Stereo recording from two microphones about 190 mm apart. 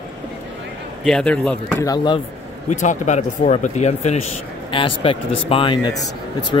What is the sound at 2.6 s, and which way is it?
Speech, 40° left (ahead or behind).